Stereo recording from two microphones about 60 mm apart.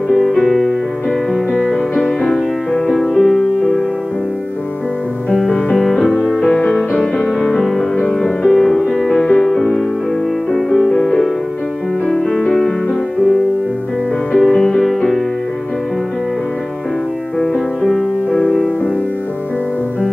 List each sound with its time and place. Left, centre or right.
0.1 s music: centre
5.3 s music: centre
6.4 s music: centre
7.3 s music: centre
14.3 s music: centre
17.4 s music: centre